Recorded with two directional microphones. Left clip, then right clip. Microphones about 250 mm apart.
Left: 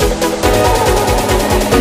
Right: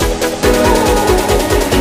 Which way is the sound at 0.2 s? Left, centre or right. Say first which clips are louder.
Right 2 dB; centre.